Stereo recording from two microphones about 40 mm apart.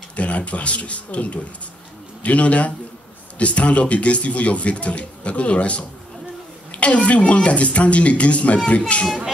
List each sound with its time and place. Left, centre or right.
0.1 s speech: left